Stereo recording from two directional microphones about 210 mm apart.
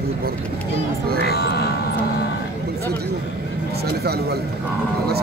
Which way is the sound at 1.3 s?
50° left (ahead or behind).